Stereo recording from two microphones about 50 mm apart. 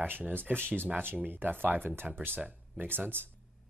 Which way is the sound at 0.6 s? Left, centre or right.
Left.